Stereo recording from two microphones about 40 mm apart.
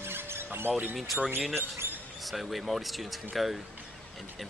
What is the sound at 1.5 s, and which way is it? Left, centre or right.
Speech, right.